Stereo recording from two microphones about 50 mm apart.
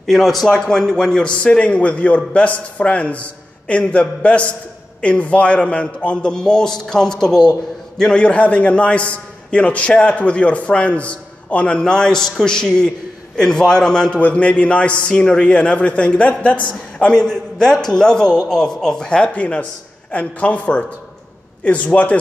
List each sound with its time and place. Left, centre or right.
0.0 s a man's voice: centre
0.5 s a man's voice: centre
17.3 s a man's voice: centre; by 22.1 s left